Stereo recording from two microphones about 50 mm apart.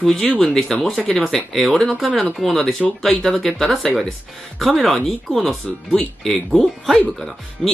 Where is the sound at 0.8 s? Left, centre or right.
Centre.